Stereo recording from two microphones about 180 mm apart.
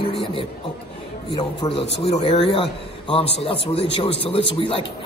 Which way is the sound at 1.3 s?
25° left (ahead or behind).